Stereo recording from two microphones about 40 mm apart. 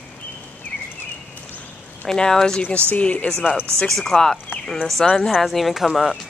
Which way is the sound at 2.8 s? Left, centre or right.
Left.